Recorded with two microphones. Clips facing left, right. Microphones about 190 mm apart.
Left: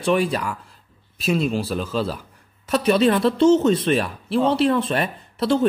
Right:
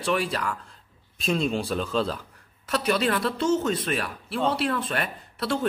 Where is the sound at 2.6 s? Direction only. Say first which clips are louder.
Left 7 dB; 20° left (ahead or behind).